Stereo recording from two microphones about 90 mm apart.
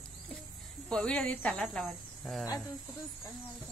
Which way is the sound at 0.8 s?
10° left (ahead or behind).